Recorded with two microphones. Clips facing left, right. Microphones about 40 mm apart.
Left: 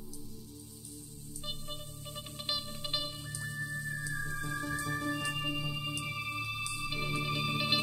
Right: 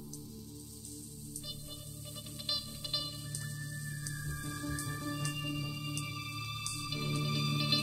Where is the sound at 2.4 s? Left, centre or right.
Left.